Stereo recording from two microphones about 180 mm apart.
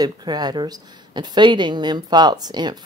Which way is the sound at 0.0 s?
25° right (ahead or behind).